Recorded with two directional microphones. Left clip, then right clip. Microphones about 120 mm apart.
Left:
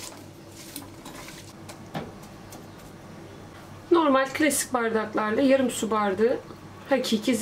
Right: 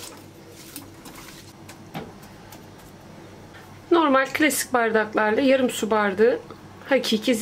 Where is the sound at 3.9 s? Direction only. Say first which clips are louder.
Right 2 dB; 45° right (ahead or behind).